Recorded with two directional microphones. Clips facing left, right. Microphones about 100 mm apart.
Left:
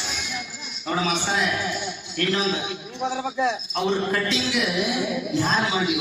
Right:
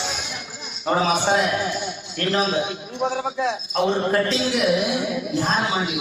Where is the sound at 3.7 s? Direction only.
40° right (ahead or behind).